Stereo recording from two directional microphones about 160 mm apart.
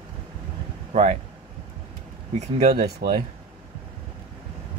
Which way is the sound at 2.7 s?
80° right.